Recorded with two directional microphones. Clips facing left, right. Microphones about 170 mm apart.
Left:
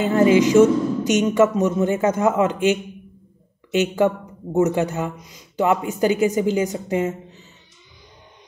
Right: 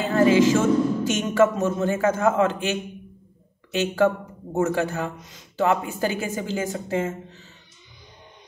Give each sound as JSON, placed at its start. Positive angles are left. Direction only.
{"t": 0.0, "sound": "speech", "side_deg": 20}